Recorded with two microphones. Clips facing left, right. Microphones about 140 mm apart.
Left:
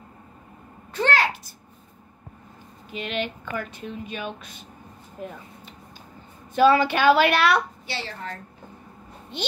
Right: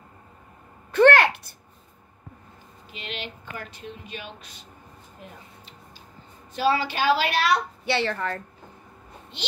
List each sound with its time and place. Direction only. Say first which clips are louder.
0.9 s a sound: right 7 dB; 60° right (ahead or behind)
2.9 s speech: left 7 dB; 50° left (ahead or behind)
6.5 s a woman's voice: left 6 dB; 50° left (ahead or behind)
7.8 s a woman's voice: right 8 dB; 65° right (ahead or behind)
9.3 s speech: left 7 dB; 55° left (ahead or behind)